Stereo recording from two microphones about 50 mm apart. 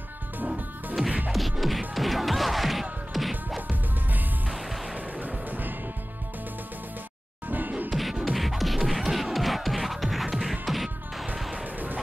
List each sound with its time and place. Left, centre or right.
1.3 s music: centre
4.9 s music: right
7.4 s music: right
7.9 s music: centre
11.5 s music: right